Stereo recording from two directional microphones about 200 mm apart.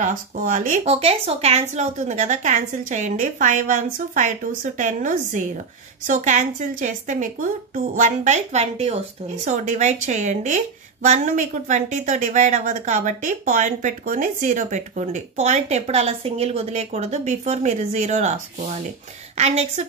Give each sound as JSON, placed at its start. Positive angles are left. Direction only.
{"t": 0.0, "sound": "speech", "side_deg": -40}